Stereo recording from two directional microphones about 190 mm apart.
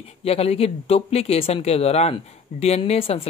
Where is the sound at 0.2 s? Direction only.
30° left (ahead or behind).